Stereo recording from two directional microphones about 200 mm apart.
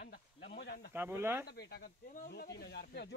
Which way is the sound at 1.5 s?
55° left (ahead or behind).